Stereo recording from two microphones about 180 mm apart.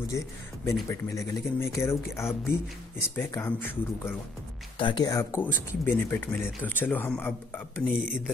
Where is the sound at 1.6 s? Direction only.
15° left (ahead or behind).